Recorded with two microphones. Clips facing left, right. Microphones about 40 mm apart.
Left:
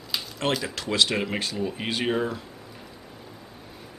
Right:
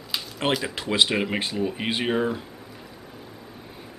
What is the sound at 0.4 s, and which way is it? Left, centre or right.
Speech, centre.